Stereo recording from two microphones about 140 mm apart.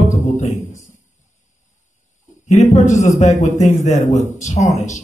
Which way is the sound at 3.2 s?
60° left (ahead or behind).